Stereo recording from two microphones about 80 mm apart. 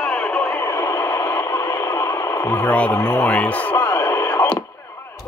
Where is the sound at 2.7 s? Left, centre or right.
Centre.